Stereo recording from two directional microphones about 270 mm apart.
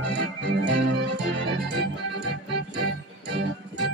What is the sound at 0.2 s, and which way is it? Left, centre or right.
Organ, right.